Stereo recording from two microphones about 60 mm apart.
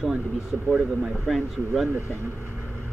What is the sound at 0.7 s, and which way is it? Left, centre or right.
Speech, centre.